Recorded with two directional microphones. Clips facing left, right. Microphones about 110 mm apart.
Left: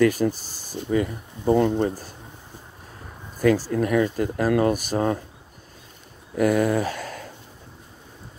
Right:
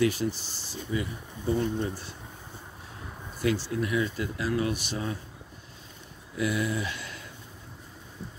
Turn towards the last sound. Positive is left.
turn(degrees=45)  # may be behind; listen again after turning